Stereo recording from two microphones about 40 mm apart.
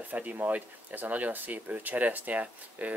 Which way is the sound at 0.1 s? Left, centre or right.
Right.